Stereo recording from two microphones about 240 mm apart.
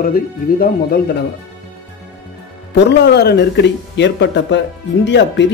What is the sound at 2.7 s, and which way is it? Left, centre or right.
Speech, left.